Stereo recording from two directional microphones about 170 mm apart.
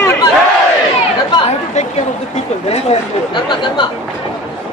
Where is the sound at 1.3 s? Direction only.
30° left (ahead or behind).